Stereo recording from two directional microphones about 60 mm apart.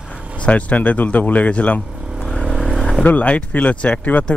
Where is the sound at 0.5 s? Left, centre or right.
Left.